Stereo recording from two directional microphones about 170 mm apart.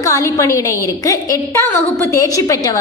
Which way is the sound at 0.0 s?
20° left (ahead or behind).